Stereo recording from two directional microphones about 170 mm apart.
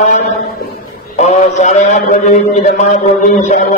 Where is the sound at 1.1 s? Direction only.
45° left (ahead or behind).